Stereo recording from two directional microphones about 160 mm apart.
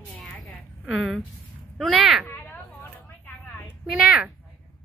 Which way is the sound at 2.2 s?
15° left (ahead or behind).